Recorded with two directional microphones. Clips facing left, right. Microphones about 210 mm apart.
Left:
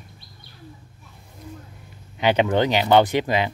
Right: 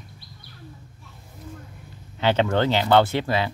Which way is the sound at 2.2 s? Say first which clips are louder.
Left 2 dB; 15° left (ahead or behind).